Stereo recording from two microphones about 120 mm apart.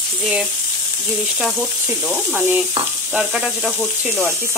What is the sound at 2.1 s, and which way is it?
Sizzle, 20° right (ahead or behind).